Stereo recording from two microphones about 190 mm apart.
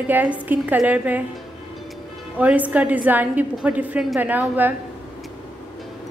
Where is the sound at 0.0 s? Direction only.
10° right (ahead or behind).